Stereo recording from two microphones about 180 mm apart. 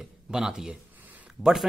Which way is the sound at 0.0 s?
5° right (ahead or behind).